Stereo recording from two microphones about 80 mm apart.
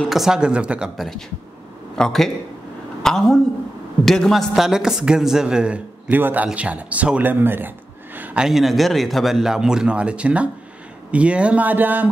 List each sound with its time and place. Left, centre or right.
0.1 s speech: centre
0.9 s a man's voice: centre; by 8.4 s right
8.4 s a man's voice: centre; by 12.1 s right